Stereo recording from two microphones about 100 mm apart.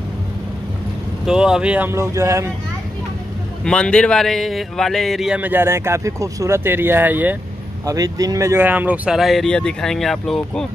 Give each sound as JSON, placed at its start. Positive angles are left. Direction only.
{"t": 1.2, "sound": "speech", "side_deg": -5}
{"t": 1.9, "sound": "speech", "side_deg": -25}
{"t": 3.6, "sound": "speech", "side_deg": 10}
{"t": 5.3, "sound": "speech", "side_deg": -15}
{"t": 7.8, "sound": "speech", "side_deg": -35}
{"t": 8.5, "sound": "speech", "side_deg": -15}
{"t": 9.2, "sound": "speech", "side_deg": 0}